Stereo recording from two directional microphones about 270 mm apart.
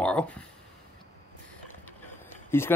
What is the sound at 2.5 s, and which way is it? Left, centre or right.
Speech, centre.